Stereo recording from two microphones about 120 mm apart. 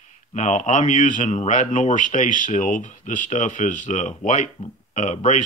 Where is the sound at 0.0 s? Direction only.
85° left.